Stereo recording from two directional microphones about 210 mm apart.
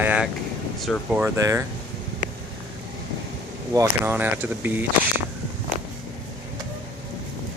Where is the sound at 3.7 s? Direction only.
10° right (ahead or behind).